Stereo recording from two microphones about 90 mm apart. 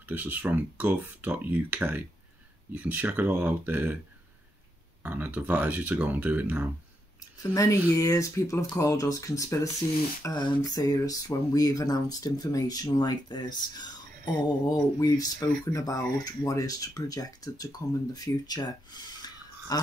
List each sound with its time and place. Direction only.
0.1 s speech: 20° right (ahead or behind)
5.0 s speech: 20° right (ahead or behind)
7.5 s speech: 40° left (ahead or behind)
10.2 s a sound: 30° left (ahead or behind)
10.7 s speech: 45° left (ahead or behind)